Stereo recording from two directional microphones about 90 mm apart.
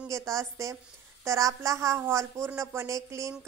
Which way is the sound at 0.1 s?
35° right (ahead or behind).